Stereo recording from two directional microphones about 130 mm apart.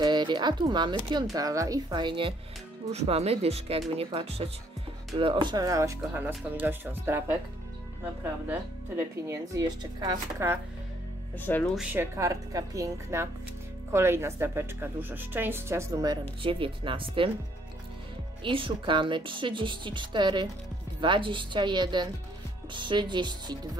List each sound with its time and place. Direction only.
0.0 s speech: 35° right (ahead or behind)
2.9 s speech: 55° right (ahead or behind)
5.2 s speech: 35° right (ahead or behind); by 10.6 s 20° right (ahead or behind)
11.3 s speech: 15° left (ahead or behind)
11.7 s speech: 5° right (ahead or behind)
12.0 s speech: 25° right (ahead or behind)
16.4 s a woman's voice: 40° right (ahead or behind)
18.4 s a woman's voice: 40° right (ahead or behind)